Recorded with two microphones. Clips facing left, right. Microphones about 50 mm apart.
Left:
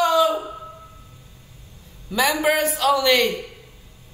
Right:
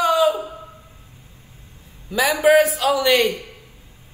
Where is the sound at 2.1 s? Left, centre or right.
Centre.